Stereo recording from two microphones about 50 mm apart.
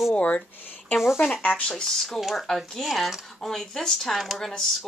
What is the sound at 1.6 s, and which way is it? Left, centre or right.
Speech, centre.